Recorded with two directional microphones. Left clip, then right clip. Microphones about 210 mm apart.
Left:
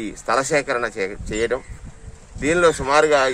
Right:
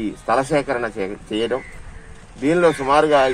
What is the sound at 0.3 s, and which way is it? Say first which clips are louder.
Speech: right 1 dB; 25° left (ahead or behind).